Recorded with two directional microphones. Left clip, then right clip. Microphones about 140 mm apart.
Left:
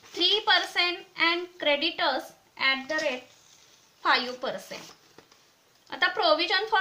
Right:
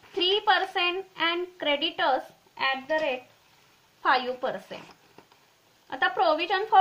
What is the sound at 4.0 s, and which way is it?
Speech, 30° right (ahead or behind).